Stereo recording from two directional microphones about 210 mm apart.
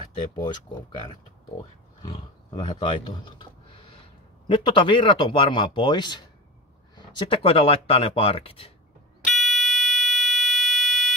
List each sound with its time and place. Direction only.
0.4 s speech: 20° left (ahead or behind)
9.2 s smoke detector: centre (ahead or behind)